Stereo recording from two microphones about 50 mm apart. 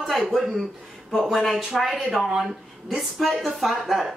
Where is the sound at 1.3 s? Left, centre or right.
Centre.